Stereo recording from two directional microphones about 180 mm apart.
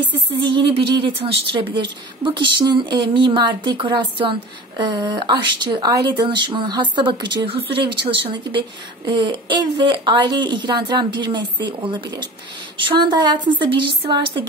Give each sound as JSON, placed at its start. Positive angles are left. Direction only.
{"t": 0.4, "sound": "speech", "side_deg": -25}